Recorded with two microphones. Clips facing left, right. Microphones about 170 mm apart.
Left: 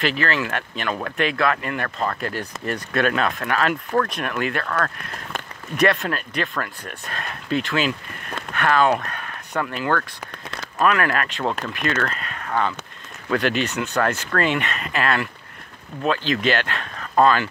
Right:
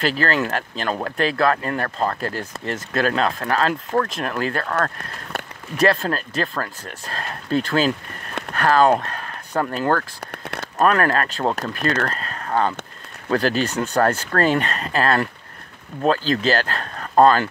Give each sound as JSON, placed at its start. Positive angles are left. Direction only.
{"t": 0.0, "sound": "speech", "side_deg": -40}